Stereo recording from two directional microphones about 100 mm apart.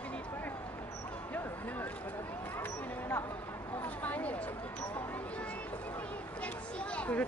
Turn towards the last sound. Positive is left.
turn(degrees=15)  # may be behind; listen again after turning